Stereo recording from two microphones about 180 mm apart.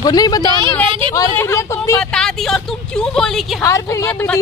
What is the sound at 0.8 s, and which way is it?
Speech, 30° right (ahead or behind).